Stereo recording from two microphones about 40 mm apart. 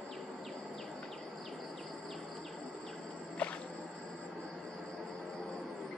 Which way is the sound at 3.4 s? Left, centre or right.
Left.